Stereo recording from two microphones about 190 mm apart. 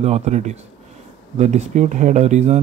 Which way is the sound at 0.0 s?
35° right (ahead or behind).